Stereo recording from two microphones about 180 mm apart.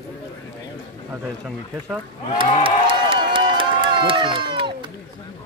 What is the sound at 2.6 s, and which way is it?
Run, 30° right (ahead or behind).